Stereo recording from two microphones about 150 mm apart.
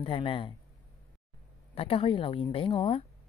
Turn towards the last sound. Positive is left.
turn(degrees=40)  # may be behind; listen again after turning